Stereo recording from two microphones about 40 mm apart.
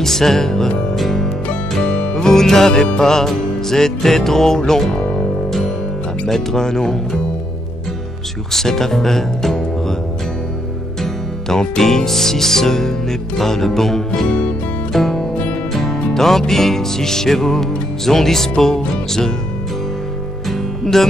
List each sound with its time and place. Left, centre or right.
0.0 s music: centre
0.9 s music: centre
1.9 s music: left
6.2 s music: centre
8.5 s music: centre
11.0 s music: centre
20.4 s music: centre